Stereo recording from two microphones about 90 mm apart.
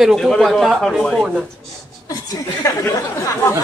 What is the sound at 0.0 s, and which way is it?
Speech, 5° left (ahead or behind).